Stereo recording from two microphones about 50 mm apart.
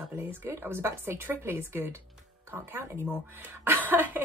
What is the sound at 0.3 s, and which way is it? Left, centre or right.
Speech, right.